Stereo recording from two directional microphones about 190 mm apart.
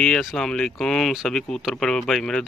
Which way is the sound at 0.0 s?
Centre (ahead or behind).